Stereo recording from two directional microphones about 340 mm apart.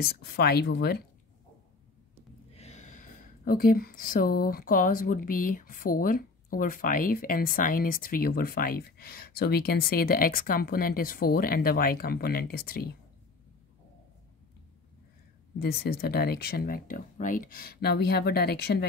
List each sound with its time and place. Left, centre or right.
0.0 s speech: left
2.5 s speech: centre
15.6 s speech: left